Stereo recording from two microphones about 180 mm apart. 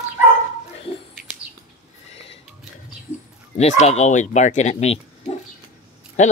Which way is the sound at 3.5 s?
35° left (ahead or behind).